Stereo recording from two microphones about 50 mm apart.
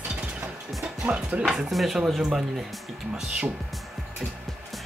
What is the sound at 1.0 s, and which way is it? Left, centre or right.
Chopping, right.